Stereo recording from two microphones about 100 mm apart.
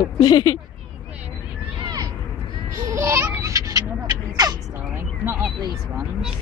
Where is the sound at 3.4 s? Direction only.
35° right (ahead or behind).